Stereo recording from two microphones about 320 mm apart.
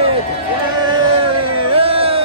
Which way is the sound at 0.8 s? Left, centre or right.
Centre.